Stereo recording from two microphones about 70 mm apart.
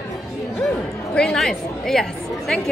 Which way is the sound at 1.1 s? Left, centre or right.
Centre.